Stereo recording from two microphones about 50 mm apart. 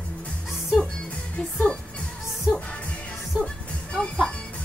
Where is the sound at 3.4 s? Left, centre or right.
Centre.